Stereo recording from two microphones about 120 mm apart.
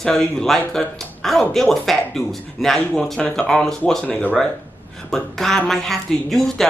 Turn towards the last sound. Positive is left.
turn(degrees=0)  # may be behind; listen again after turning